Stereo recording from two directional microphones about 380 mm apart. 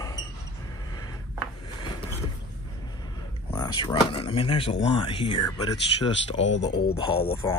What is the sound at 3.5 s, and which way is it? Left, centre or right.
Speech, centre.